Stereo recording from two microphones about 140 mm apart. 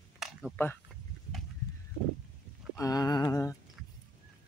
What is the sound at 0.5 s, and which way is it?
Speech, 15° left (ahead or behind).